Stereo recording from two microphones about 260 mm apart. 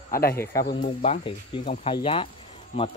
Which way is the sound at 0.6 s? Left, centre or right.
Left.